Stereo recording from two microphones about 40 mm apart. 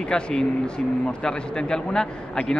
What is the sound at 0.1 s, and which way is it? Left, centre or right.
A man's voice, left.